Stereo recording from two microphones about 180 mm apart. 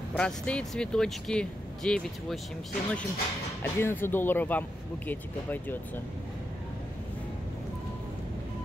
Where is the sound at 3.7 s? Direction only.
15° left (ahead or behind).